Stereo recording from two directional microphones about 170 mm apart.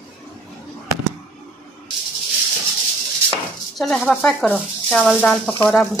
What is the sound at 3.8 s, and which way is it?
A woman's voice, 5° left (ahead or behind).